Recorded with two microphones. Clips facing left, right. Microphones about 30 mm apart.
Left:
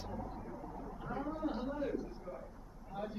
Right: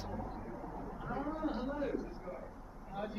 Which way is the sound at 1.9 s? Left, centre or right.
Centre.